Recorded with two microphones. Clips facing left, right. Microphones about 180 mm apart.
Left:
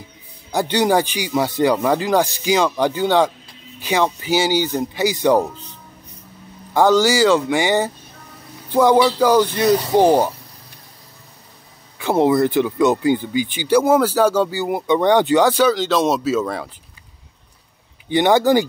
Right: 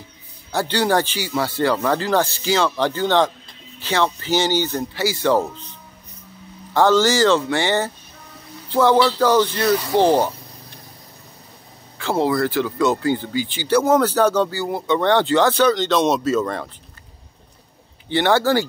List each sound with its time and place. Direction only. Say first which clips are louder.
0.5 s speech: left 2 dB; 15° left (ahead or behind)
6.7 s speech: left 1 dB; 10° left (ahead or behind)
12.0 s speech: left 4 dB; 20° left (ahead or behind)
18.0 s speech: left 3 dB; 15° left (ahead or behind)